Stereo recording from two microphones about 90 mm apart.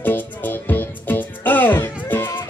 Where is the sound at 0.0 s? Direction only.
20° left (ahead or behind).